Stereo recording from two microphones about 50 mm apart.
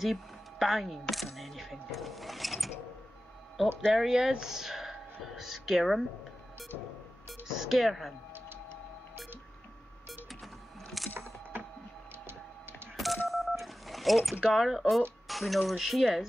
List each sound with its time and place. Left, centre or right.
0.0 s speech: centre
3.9 s speech: centre
7.4 s speech: centre
10.4 s printer: centre
11.5 s a sound: right
12.9 s telephone dialing: centre
14.5 s speech: centre